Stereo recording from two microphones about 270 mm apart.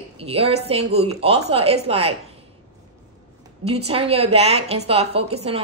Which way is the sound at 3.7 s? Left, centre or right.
Right.